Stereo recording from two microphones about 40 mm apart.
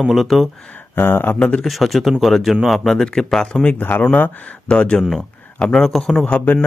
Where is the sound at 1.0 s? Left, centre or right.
Left.